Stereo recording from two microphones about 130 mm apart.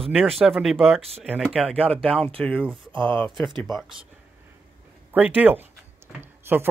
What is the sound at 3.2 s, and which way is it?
Speech, 5° left (ahead or behind).